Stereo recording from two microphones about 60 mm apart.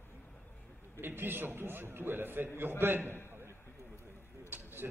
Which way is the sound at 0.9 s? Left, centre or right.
Right.